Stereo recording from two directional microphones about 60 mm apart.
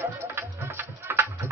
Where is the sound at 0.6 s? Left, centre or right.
Right.